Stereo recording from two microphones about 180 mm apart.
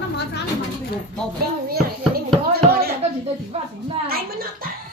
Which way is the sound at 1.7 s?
60° right (ahead or behind).